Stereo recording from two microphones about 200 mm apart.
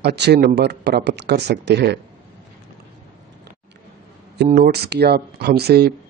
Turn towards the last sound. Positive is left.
turn(degrees=-55)  # may be behind; listen again after turning